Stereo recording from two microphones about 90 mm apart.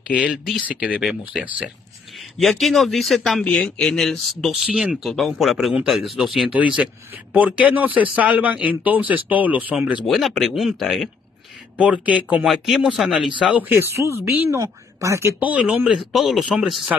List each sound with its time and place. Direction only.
0.7 s a man's voice: 10° right (ahead or behind)
2.3 s speech: centre (ahead or behind)
4.4 s speech: 5° right (ahead or behind)
6.5 s a man's voice: 15° right (ahead or behind)
10.0 s speech: centre (ahead or behind)
11.8 s a man's voice: 15° right (ahead or behind)
12.4 s a man's voice: 5° right (ahead or behind)
13.7 s speech: 30° right (ahead or behind)
15.4 s a man's voice: 15° right (ahead or behind)
15.9 s speech: 5° right (ahead or behind)